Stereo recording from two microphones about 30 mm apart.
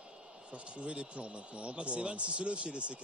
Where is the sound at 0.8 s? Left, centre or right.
Right.